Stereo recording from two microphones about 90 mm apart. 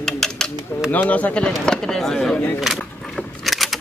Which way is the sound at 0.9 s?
15° left (ahead or behind).